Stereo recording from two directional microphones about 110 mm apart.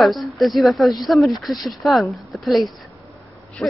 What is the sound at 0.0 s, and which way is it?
Speech, centre (ahead or behind).